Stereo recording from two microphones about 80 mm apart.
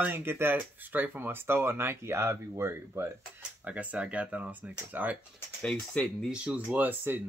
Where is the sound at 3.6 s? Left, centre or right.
Centre.